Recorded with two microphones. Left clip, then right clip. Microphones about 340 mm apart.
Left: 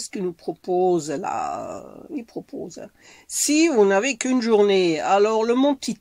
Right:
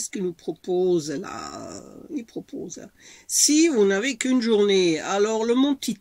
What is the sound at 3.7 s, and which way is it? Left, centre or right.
Speech, centre.